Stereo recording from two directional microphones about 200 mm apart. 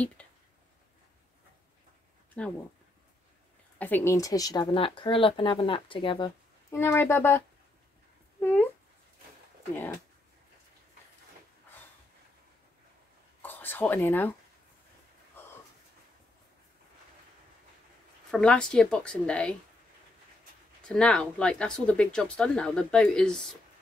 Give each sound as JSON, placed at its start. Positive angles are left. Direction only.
{"t": 0.2, "sound": "a sound", "side_deg": 5}
{"t": 2.4, "sound": "speech", "side_deg": 5}
{"t": 3.7, "sound": "speech", "side_deg": 10}
{"t": 6.7, "sound": "a woman's voice", "side_deg": 10}
{"t": 13.4, "sound": "speech", "side_deg": 10}
{"t": 18.3, "sound": "speech", "side_deg": 5}
{"t": 20.8, "sound": "speech", "side_deg": 5}